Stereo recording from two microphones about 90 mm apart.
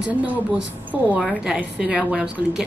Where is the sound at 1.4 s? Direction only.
10° right (ahead or behind).